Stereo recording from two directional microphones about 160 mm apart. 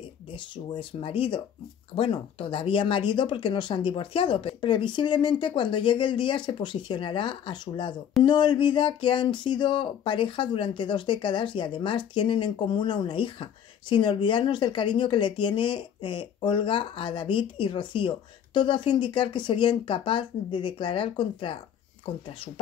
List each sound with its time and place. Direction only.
0.7 s speech: 35° left (ahead or behind)